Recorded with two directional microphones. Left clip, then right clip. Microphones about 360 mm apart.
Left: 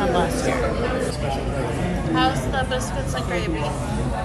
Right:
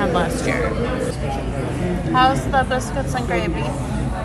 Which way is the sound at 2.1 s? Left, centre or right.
Centre.